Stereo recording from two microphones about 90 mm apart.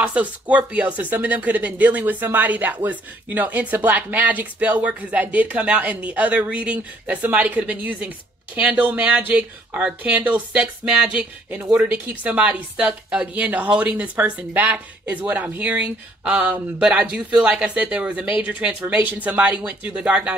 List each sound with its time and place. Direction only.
0.0 s speech: 15° right (ahead or behind)